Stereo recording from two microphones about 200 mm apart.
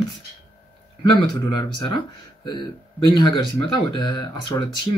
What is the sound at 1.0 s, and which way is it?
Speech, 20° left (ahead or behind).